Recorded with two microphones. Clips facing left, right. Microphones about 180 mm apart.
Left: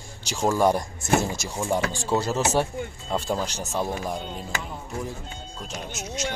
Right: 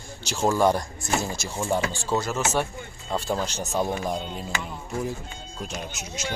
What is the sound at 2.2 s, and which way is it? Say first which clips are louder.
Speech: left 2 dB; 35° left (ahead or behind).